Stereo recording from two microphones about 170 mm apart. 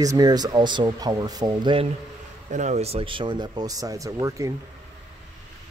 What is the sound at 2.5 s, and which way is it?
Speech, 45° right (ahead or behind).